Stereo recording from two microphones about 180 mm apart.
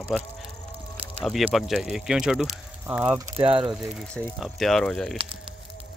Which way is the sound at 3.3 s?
30° right (ahead or behind).